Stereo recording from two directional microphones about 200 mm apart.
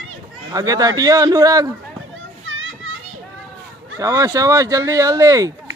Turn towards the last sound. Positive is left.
turn(degrees=-15)  # may be behind; listen again after turning